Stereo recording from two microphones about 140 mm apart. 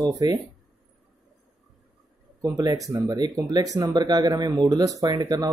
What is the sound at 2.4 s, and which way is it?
Speech, 25° right (ahead or behind).